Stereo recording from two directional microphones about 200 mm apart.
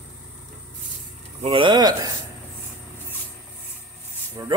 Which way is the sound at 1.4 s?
25° right (ahead or behind).